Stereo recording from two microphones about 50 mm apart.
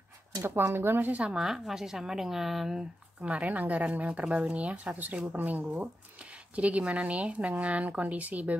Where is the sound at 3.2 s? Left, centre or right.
Right.